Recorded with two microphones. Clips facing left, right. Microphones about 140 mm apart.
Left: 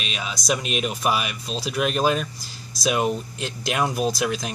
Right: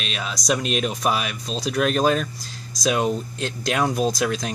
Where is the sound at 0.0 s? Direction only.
5° left (ahead or behind).